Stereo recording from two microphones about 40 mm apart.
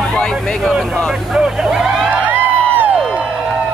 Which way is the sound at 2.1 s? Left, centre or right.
Right.